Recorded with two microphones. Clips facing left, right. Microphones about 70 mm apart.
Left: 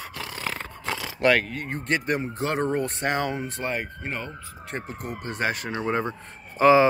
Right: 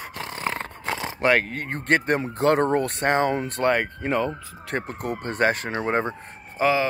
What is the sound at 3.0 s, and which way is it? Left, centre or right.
Speech, right.